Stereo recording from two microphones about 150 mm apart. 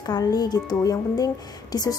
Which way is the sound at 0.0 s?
25° left (ahead or behind).